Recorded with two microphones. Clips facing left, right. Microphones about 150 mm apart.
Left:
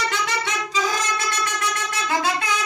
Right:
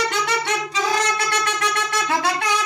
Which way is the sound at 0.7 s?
65° right (ahead or behind).